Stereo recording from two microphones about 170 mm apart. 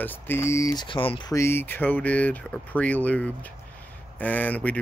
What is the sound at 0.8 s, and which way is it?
Speech, 30° left (ahead or behind).